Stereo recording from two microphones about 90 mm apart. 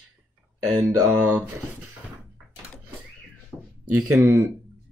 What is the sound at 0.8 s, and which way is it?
Speech, 20° right (ahead or behind).